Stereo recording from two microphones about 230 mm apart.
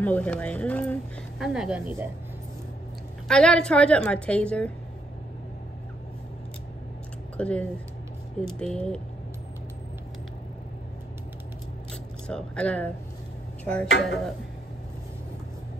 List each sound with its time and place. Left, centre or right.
0.0 s a woman's voice: centre
3.3 s a woman's voice: centre
7.3 s a woman's voice: centre
11.9 s speech: centre
13.8 s speech: left